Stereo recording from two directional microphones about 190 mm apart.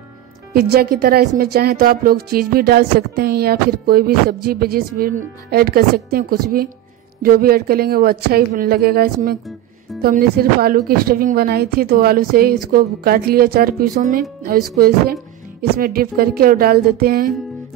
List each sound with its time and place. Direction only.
0.5 s speech: 55° right (ahead or behind)
15.7 s speech: 50° right (ahead or behind)